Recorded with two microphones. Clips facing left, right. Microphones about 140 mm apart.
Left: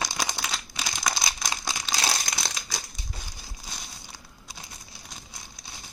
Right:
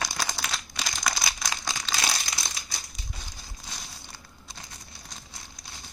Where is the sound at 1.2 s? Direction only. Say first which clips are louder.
Left 1 dB; 15° left (ahead or behind).